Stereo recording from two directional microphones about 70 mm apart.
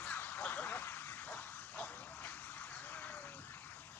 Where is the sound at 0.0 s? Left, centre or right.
Left.